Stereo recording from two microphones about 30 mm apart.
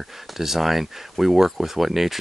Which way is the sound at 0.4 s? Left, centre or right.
Centre.